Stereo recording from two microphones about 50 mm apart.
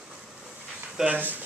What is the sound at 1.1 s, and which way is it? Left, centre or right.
Speech, right.